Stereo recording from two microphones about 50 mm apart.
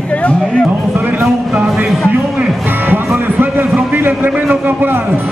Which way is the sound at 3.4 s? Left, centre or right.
Right.